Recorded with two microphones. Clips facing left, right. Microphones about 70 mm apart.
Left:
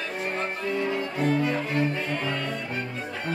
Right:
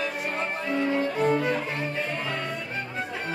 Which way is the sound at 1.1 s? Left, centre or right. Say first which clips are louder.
Left 2 dB; right.